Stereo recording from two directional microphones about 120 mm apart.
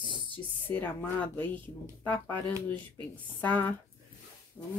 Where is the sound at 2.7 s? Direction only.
10° left (ahead or behind).